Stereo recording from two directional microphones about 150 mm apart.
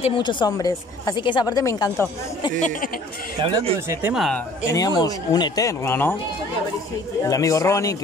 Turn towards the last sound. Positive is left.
turn(degrees=20)  # may be behind; listen again after turning